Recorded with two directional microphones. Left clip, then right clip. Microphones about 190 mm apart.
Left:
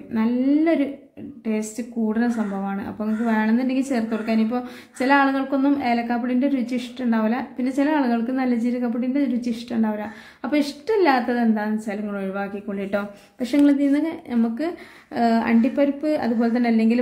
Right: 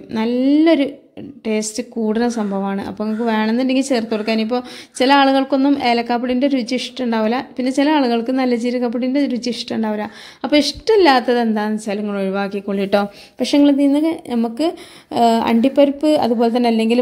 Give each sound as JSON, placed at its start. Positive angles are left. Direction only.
{"t": 0.1, "sound": "speech", "side_deg": -35}